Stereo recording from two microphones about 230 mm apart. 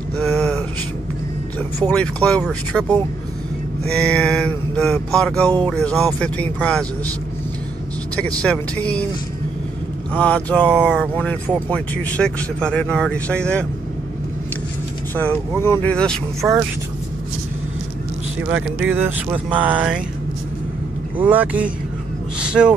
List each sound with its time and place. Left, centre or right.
0.2 s a sound: centre
1.9 s mantra: centre
8.2 s mantra: centre
10.1 s mantra: centre
15.1 s speech: centre
16.3 s speech: centre
18.5 s speech: centre
21.2 s speech: centre